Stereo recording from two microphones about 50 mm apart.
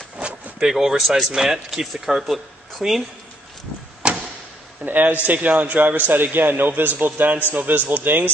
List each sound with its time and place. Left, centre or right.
0.2 s speech: centre
4.8 s a man's voice: right